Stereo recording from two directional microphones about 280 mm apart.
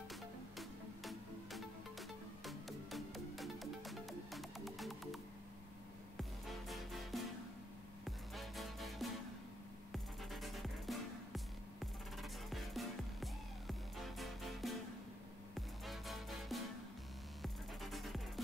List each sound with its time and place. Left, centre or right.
0.1 s music: centre